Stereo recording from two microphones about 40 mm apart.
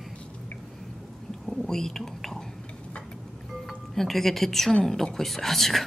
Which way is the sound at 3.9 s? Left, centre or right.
Centre.